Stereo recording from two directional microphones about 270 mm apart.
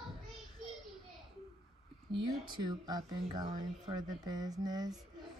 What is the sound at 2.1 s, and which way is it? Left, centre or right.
Speech, centre.